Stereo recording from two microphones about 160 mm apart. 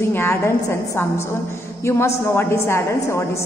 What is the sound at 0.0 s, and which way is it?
A woman's voice, 15° left (ahead or behind).